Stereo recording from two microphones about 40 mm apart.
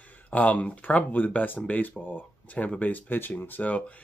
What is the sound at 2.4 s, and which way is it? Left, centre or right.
Speech, left.